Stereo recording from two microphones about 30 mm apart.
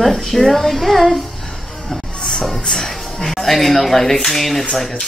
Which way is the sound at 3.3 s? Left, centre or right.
Centre.